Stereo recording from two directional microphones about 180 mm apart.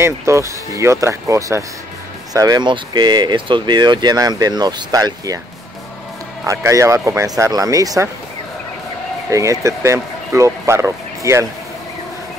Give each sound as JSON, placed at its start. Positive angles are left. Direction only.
{"t": 0.0, "sound": "speech", "side_deg": -15}
{"t": 6.4, "sound": "speech", "side_deg": -15}
{"t": 9.3, "sound": "speech", "side_deg": -15}